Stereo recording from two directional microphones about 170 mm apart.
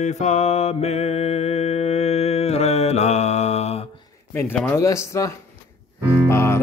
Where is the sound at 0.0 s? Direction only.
40° left (ahead or behind).